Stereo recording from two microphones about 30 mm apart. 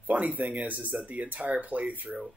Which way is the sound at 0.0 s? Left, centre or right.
Right.